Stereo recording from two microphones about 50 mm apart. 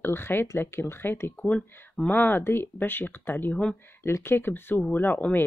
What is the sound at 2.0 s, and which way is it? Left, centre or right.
Speech, left.